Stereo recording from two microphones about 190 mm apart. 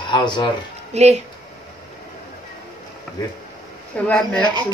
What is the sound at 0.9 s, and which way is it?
Speech, 35° right (ahead or behind).